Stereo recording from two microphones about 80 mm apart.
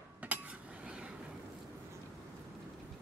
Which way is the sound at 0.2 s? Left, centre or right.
Centre.